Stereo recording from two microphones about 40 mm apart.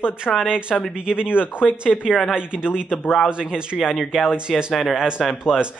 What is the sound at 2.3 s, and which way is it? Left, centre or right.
Speech, right.